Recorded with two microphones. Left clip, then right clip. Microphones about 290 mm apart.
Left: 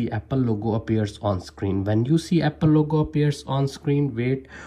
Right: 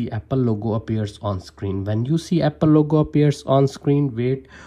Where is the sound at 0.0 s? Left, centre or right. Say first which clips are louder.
Right 3 dB; centre.